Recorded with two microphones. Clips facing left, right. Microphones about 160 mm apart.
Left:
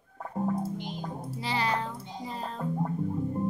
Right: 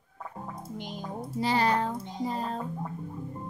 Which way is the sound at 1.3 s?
45° right (ahead or behind).